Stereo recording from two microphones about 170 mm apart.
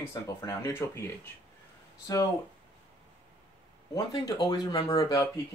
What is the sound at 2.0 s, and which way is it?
Speech, 20° left (ahead or behind).